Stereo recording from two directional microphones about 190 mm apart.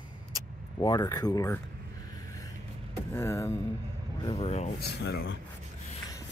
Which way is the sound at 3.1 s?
15° left (ahead or behind).